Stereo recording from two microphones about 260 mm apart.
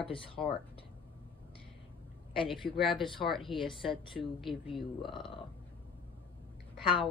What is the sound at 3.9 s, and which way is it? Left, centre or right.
Speech, centre.